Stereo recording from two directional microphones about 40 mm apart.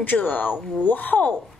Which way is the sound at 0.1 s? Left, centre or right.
Left.